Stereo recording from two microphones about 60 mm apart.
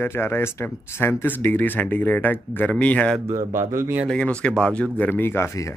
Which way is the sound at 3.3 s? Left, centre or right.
Right.